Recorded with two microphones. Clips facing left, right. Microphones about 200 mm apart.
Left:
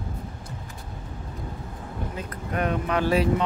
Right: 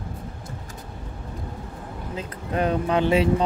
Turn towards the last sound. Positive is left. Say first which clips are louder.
# right 3 dB
turn(degrees=-25)  # may be behind; listen again after turning